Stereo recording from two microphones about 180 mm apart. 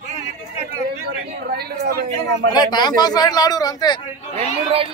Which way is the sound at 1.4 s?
60° right (ahead or behind).